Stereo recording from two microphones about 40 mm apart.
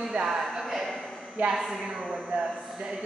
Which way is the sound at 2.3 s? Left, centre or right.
Right.